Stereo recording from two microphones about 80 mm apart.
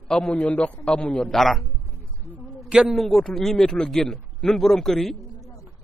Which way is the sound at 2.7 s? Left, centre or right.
Centre.